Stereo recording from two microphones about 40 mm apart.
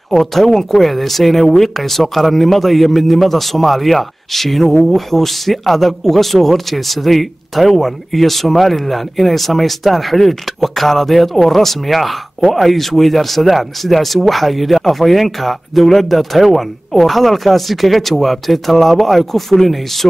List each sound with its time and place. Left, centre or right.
0.1 s a man's voice: centre